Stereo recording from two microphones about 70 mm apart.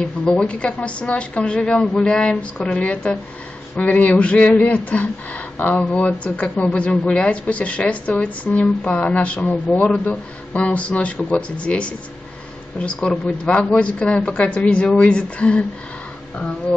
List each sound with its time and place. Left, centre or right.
0.0 s a woman's voice: centre